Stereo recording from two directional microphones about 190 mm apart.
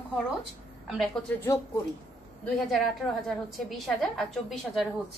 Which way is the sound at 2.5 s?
Centre (ahead or behind).